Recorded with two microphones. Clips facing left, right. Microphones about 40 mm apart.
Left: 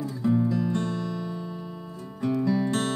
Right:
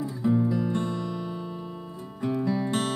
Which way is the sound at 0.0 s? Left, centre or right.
Centre.